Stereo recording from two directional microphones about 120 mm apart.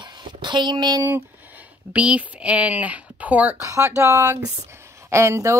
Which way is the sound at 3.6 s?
25° right (ahead or behind).